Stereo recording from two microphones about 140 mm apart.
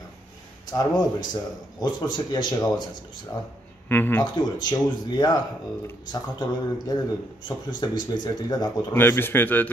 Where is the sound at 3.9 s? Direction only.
15° left (ahead or behind).